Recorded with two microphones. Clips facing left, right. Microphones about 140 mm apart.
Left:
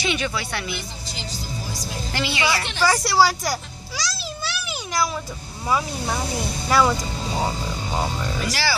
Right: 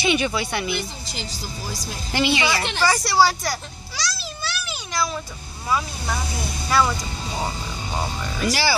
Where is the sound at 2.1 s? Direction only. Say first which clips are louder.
Right 3 dB; 20° right (ahead or behind).